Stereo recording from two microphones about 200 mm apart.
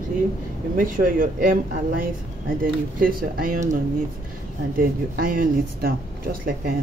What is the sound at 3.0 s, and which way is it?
Speech, 45° right (ahead or behind).